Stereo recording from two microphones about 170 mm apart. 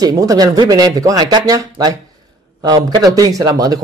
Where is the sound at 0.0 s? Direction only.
20° right (ahead or behind).